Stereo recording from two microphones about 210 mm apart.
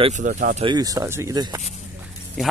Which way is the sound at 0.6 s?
20° right (ahead or behind).